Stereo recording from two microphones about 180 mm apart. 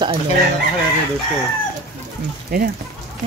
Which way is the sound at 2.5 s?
55° right (ahead or behind).